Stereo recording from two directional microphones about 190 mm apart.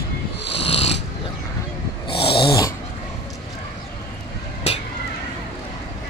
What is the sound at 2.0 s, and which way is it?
Snoring, 60° left (ahead or behind).